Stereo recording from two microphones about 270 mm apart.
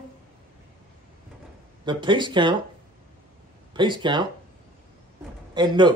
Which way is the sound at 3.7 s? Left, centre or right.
Centre.